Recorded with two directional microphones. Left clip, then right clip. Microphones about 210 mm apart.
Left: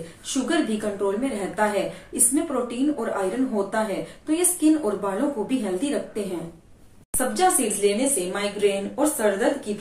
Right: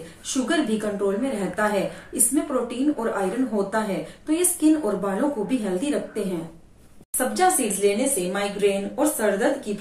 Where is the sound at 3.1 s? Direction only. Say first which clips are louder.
Even; 5° right (ahead or behind).